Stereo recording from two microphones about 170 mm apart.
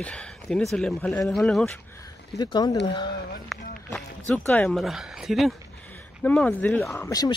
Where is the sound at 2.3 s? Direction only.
25° left (ahead or behind).